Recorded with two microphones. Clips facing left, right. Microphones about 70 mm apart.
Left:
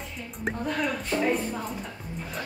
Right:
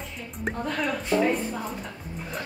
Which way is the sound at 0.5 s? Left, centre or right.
Centre.